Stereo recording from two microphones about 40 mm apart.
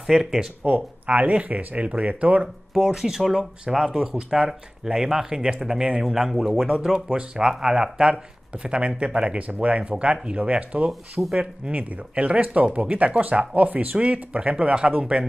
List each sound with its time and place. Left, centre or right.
0.0 s speech: centre
1.0 s speech: right
1.8 s speech: right
2.4 s speech: centre; by 10.9 s right
11.2 s speech: centre
11.7 s speech: right